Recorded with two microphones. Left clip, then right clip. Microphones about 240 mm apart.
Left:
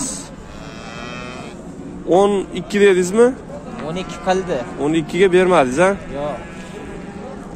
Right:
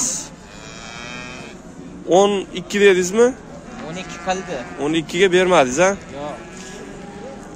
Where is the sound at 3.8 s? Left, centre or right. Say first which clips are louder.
Left 4 dB; left.